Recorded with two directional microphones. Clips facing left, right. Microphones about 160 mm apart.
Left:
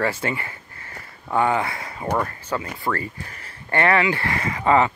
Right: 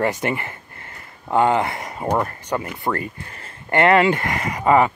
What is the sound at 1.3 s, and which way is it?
Speech, 20° right (ahead or behind).